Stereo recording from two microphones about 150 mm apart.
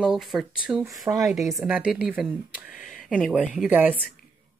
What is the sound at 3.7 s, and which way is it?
Speech, 10° right (ahead or behind).